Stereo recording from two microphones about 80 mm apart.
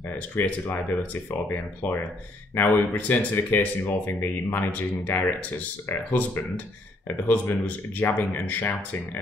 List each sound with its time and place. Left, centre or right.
0.4 s speech: left